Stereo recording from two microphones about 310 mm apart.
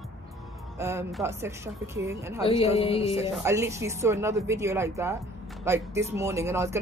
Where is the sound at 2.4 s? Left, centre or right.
Centre.